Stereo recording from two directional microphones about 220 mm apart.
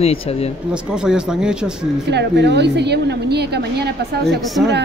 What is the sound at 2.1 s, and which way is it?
A woman's voice, 50° right (ahead or behind).